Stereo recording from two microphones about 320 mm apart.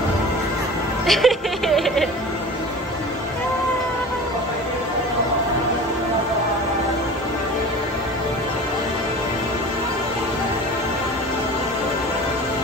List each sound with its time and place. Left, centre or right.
1.0 s music: centre